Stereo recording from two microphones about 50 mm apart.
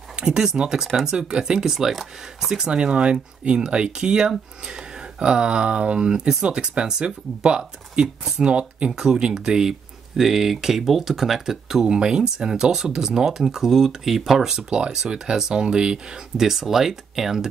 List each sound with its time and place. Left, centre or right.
0.1 s speech: centre
1.1 s speech: centre
2.5 s speech: centre